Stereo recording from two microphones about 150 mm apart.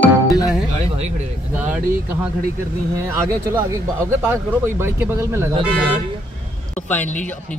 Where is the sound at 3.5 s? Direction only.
20° right (ahead or behind).